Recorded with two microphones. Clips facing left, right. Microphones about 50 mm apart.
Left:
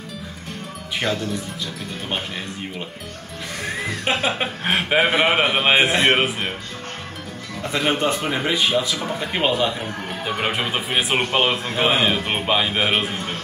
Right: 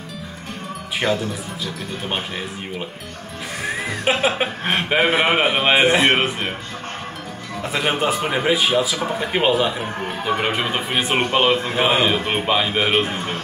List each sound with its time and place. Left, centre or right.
0.9 s speech: centre
3.6 s a man's voice: centre
7.6 s a man's voice: centre